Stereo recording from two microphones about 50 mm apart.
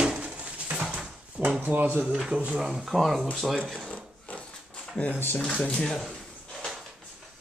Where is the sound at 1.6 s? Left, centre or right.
Right.